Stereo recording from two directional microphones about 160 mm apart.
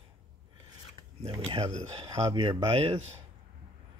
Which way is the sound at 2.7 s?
40° right (ahead or behind).